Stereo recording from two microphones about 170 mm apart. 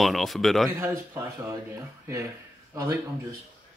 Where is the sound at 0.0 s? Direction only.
Centre (ahead or behind).